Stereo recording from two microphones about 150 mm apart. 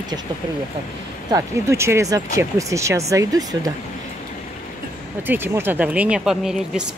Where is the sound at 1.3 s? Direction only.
20° right (ahead or behind).